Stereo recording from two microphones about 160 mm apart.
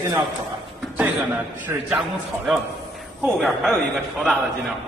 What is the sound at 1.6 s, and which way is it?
Speech, 5° right (ahead or behind).